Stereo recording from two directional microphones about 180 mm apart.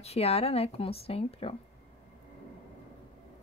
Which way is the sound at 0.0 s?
35° left (ahead or behind).